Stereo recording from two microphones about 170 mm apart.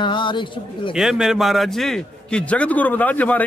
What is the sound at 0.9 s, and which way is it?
A man's voice, 5° right (ahead or behind).